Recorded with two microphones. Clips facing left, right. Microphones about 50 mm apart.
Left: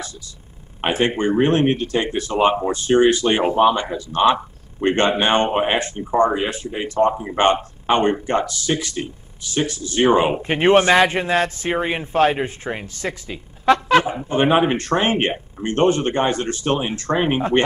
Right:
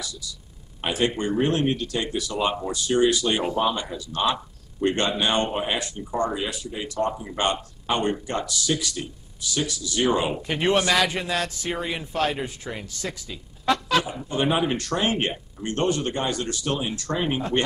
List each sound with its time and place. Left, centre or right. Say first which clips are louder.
0.7 s speech: left 5 dB; left